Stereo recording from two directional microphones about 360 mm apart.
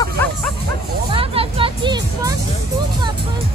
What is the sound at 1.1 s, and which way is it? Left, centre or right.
Music, centre.